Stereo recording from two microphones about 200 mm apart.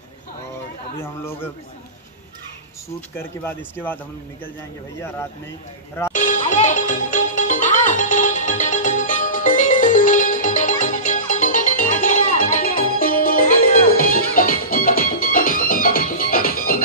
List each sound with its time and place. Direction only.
1.0 s speech: 10° left (ahead or behind)
3.2 s speech: 10° left (ahead or behind)
6.1 s music: 40° left (ahead or behind)